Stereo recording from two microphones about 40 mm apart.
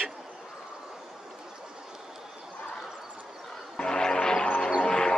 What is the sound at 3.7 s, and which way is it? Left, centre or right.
Music, left.